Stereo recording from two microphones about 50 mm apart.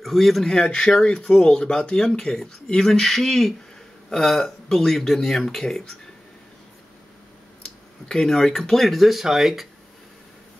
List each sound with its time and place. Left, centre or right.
0.0 s speech: centre
0.7 s speech: centre
8.1 s speech: centre